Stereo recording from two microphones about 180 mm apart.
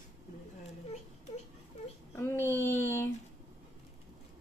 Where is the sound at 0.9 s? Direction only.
35° left (ahead or behind).